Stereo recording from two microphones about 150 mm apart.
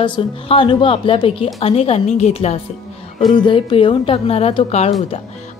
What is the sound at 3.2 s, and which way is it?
A woman's voice, 30° left (ahead or behind).